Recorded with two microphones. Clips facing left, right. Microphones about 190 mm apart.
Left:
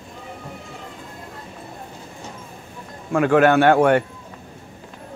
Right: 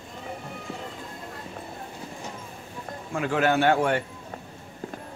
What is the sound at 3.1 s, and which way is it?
Speech, 60° left (ahead or behind).